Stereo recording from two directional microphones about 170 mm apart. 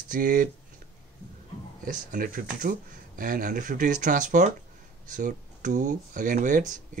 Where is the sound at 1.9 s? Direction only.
55° right (ahead or behind).